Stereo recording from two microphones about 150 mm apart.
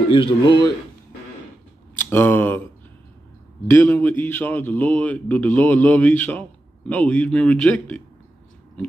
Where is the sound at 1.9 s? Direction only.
15° left (ahead or behind).